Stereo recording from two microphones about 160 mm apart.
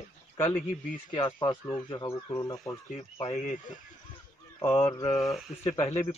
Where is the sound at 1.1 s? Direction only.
30° left (ahead or behind).